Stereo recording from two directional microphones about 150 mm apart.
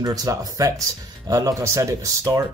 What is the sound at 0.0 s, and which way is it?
Speech, 25° right (ahead or behind).